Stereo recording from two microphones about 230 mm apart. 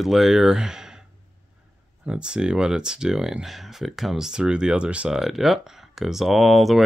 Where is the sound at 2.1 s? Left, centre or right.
Centre.